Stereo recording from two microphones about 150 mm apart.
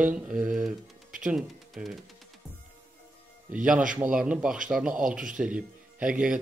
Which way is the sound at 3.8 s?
60° right (ahead or behind).